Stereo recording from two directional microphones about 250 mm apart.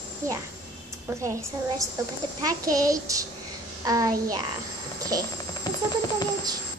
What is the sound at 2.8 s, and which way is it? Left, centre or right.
A child's voice, centre.